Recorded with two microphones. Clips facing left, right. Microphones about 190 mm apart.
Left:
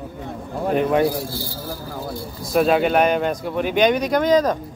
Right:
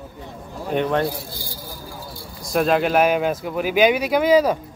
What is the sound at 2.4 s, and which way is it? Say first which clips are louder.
Speech: left 2 dB; centre (ahead or behind).